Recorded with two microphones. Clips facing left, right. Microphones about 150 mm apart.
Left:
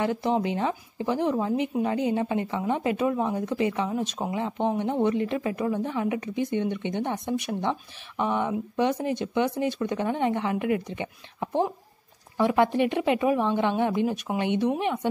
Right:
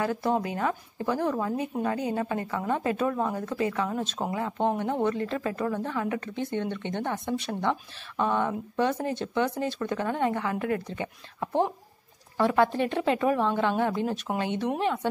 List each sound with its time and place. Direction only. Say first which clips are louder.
0.0 s speech: left 2 dB; 20° left (ahead or behind)